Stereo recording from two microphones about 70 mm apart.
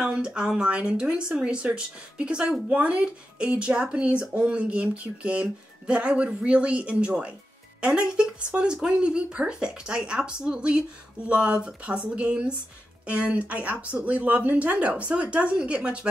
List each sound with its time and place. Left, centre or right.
0.0 s speech: centre